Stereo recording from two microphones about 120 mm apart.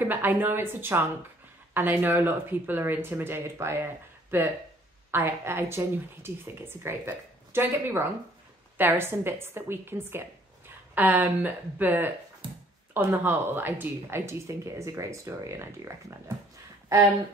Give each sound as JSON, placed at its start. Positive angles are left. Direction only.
{"t": 0.0, "sound": "speech", "side_deg": -15}
{"t": 12.4, "sound": "a sound", "side_deg": -45}
{"t": 12.9, "sound": "speech", "side_deg": -15}